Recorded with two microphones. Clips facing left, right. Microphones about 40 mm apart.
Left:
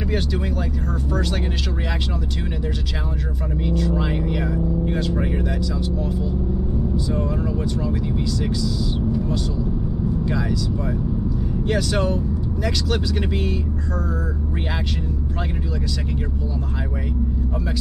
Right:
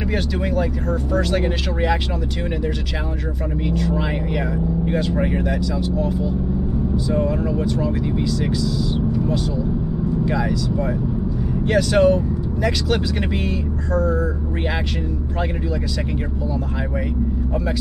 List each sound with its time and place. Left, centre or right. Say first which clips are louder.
3.7 s speech: left 1 dB; centre
5.7 s speech: right 3 dB; centre
11.6 s speech: right 7 dB; centre